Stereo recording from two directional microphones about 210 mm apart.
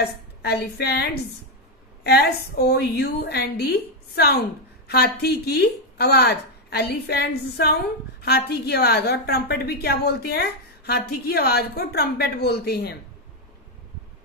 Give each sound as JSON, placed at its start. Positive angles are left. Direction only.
{"t": 0.0, "sound": "a woman's voice", "side_deg": 50}